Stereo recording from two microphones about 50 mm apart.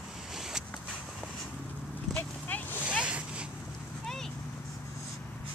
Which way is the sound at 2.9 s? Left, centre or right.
Right.